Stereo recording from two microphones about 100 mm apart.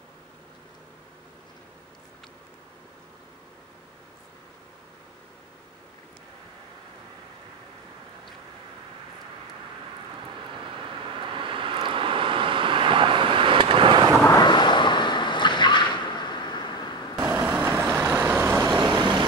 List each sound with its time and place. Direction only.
11.1 s vehicle: 55° right (ahead or behind)
14.3 s a sound: 45° left (ahead or behind)
17.2 s vehicle: 15° right (ahead or behind)
17.9 s vehicle: 30° right (ahead or behind)
18.9 s vehicle: 50° right (ahead or behind)